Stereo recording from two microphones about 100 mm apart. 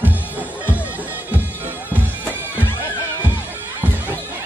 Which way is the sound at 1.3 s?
20° right (ahead or behind).